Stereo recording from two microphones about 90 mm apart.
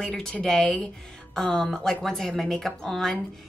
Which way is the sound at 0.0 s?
5° left (ahead or behind).